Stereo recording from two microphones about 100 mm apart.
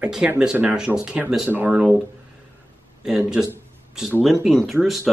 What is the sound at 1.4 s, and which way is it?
Speech, 20° right (ahead or behind).